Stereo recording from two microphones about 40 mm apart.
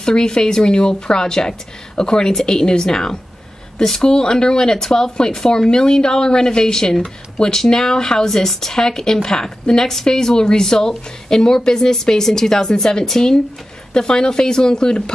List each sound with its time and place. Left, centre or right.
0.0 s a woman's voice: centre